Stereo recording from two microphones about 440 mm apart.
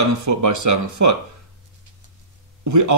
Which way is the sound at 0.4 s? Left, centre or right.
Right.